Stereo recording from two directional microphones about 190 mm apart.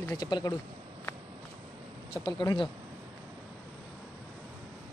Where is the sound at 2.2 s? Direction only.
20° left (ahead or behind).